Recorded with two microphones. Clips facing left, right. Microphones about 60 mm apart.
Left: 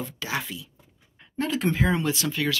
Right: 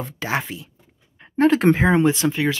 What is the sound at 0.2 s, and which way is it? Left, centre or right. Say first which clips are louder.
Speech: right 7 dB; right.